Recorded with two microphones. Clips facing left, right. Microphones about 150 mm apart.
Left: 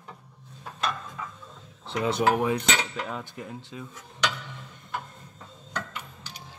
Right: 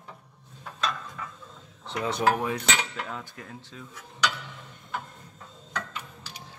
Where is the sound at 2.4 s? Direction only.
15° left (ahead or behind).